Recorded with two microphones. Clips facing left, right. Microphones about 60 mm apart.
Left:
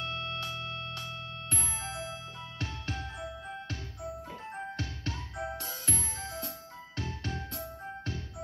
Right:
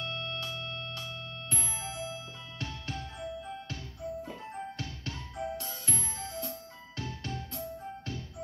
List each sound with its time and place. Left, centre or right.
0.0 s music: left